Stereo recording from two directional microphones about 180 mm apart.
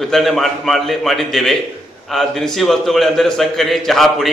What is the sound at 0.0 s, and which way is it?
A man's voice, centre (ahead or behind).